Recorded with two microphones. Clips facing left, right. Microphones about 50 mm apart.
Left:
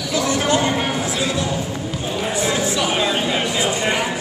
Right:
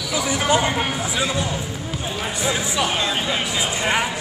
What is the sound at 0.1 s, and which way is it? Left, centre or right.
Speech, centre.